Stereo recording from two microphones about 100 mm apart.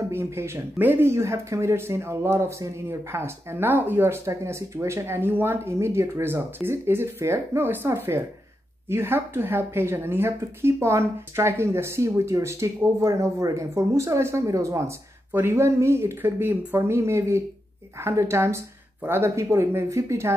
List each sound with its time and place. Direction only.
0.1 s speech: 25° right (ahead or behind)